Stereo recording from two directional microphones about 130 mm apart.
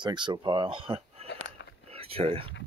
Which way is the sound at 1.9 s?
50° right (ahead or behind).